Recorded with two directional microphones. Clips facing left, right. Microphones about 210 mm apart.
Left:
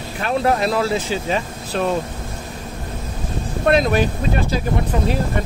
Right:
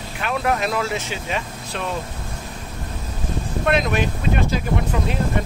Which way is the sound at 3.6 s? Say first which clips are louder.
Left 4 dB; 35° left (ahead or behind).